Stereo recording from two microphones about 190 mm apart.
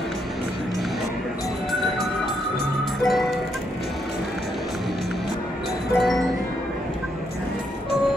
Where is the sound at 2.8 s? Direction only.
Centre (ahead or behind).